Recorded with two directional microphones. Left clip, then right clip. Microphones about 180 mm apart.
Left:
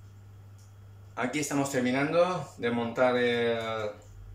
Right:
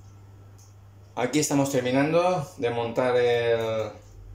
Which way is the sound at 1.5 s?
15° right (ahead or behind).